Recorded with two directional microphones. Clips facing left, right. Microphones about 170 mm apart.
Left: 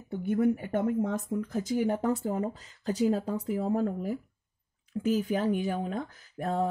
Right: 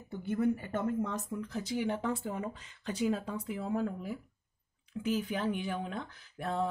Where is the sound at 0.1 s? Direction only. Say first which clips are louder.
Left 5 dB; 55° left (ahead or behind).